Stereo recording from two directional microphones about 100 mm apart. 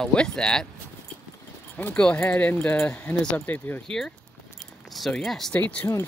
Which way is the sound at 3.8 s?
5° left (ahead or behind).